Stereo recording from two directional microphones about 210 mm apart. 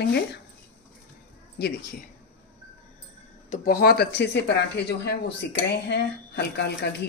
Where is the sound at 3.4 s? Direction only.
35° left (ahead or behind).